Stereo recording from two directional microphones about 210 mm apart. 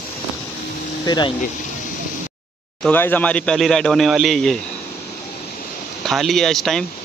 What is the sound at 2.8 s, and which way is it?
Speech, 10° left (ahead or behind).